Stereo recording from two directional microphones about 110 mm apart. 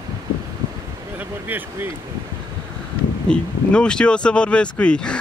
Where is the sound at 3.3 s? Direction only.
10° left (ahead or behind).